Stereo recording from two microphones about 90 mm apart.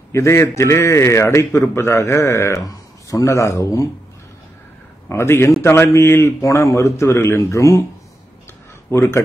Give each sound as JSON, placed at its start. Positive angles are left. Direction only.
{"t": 0.1, "sound": "a man's voice", "side_deg": 30}
{"t": 5.0, "sound": "a man's voice", "side_deg": 30}
{"t": 8.9, "sound": "a man's voice", "side_deg": 30}